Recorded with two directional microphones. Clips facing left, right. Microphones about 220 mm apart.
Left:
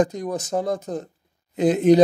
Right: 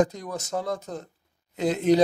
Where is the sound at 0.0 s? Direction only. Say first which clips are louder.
Left 3 dB; 15° left (ahead or behind).